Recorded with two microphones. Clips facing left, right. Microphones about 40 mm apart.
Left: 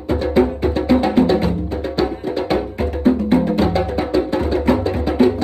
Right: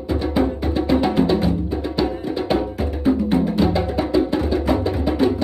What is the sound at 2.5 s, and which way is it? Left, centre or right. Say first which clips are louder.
Music: even; left.